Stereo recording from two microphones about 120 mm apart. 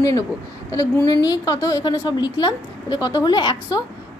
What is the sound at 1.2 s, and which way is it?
Speech, 30° left (ahead or behind).